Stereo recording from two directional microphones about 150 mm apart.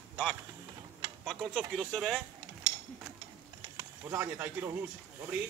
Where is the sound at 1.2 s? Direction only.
Centre (ahead or behind).